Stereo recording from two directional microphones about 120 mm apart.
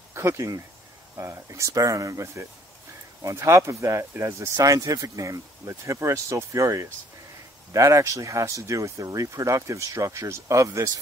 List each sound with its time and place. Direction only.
0.1 s speech: 20° right (ahead or behind)